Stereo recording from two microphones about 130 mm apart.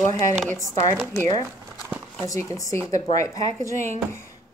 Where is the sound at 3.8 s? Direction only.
65° right (ahead or behind).